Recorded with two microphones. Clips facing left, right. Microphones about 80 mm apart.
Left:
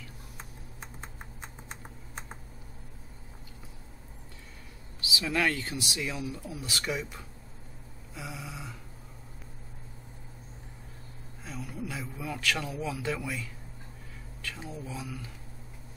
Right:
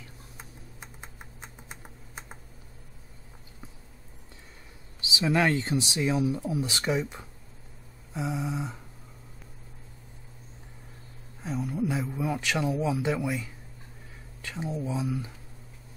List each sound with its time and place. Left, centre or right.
5.0 s speech: right
11.4 s speech: right